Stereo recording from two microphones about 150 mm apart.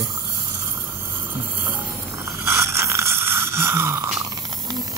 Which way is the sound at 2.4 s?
20° right (ahead or behind).